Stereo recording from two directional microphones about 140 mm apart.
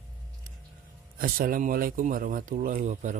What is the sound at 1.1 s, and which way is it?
A man's voice, 90° right.